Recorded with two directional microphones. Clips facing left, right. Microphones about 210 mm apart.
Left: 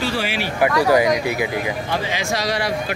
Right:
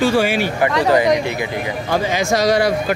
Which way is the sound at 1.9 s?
45° right (ahead or behind).